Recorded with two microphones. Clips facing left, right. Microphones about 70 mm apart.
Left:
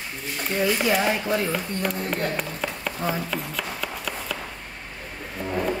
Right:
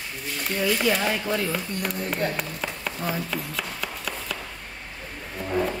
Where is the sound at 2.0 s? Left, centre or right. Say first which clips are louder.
Left 1 dB; centre.